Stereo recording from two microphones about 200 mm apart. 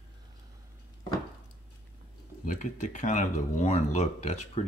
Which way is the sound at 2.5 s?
40° left (ahead or behind).